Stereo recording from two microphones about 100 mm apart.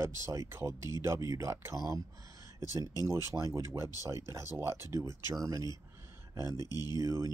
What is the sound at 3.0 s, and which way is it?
Speech, 30° right (ahead or behind).